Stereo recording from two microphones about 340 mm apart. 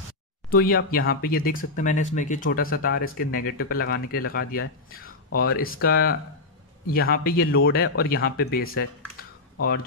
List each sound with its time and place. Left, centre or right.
0.5 s speech: left